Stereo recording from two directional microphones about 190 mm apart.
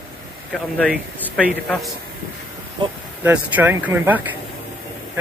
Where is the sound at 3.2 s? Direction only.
10° right (ahead or behind).